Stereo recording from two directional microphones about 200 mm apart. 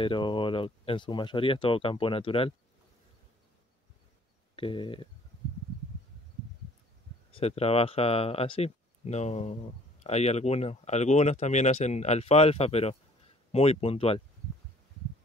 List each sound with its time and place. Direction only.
0.0 s speech: 25° left (ahead or behind)
4.6 s speech: 25° left (ahead or behind)
7.3 s speech: 30° left (ahead or behind)